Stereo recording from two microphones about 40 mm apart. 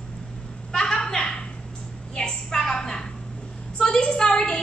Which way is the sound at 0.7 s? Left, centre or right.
Centre.